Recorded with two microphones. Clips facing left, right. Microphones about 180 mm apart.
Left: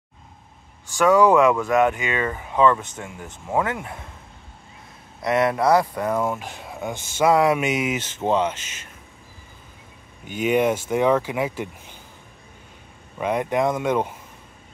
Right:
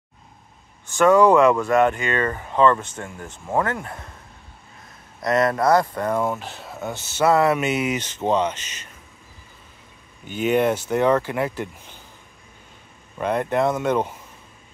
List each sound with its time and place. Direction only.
0.9 s speech: centre (ahead or behind)
5.2 s speech: 10° left (ahead or behind)
10.2 s speech: 10° left (ahead or behind)
13.2 s speech: 10° left (ahead or behind)